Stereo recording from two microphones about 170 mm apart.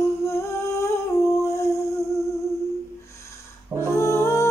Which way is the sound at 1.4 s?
15° left (ahead or behind).